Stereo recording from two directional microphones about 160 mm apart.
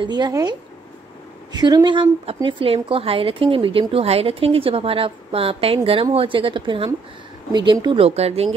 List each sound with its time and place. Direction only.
0.0 s a woman's voice: 25° right (ahead or behind)
8.0 s a woman's voice: 40° right (ahead or behind)